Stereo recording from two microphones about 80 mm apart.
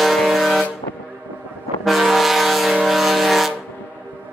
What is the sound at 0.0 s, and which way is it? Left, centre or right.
Vehicle, centre.